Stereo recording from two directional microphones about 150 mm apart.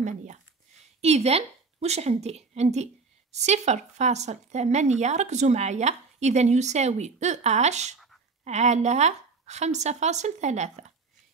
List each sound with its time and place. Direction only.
1.0 s a woman's voice: 45° right (ahead or behind)